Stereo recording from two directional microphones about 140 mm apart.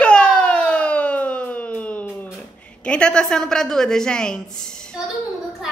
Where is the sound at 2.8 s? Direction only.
5° left (ahead or behind).